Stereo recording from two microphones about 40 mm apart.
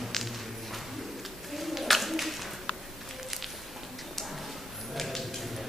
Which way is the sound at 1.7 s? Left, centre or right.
Centre.